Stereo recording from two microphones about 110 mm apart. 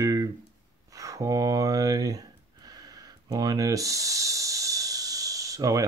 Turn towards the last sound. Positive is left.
turn(degrees=-35)  # may be behind; listen again after turning